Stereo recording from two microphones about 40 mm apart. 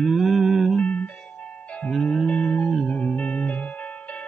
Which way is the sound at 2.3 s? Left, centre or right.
Left.